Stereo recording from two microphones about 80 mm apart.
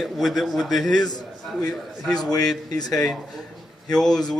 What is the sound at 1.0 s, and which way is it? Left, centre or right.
Speech, left.